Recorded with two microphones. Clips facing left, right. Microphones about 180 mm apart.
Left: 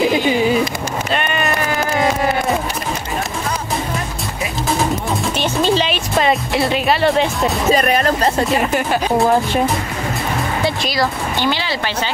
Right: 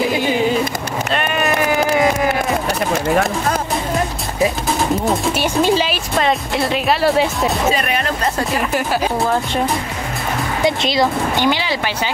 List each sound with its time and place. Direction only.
1.1 s sheep: centre (ahead or behind)
5.4 s music: 10° right (ahead or behind)
7.7 s speech: 40° left (ahead or behind)
10.6 s speech: 20° right (ahead or behind)